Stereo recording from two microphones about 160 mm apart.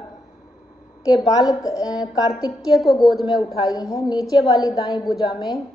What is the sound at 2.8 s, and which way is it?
Speech, centre (ahead or behind).